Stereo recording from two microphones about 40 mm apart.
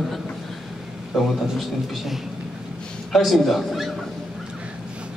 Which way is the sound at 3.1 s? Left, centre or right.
Centre.